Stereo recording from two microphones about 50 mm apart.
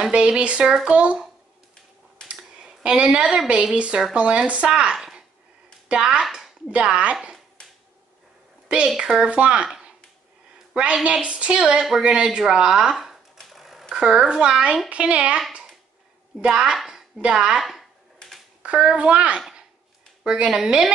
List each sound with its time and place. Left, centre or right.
0.0 s speech: right
2.2 s a sound: centre
3.7 s speech: right
4.9 s a sound: centre
5.9 s speech: centre
8.8 s a woman's voice: centre
10.7 s a woman's voice: right
12.9 s a sound: centre
13.9 s a woman's voice: centre
17.6 s speech: centre
18.6 s a woman's voice: right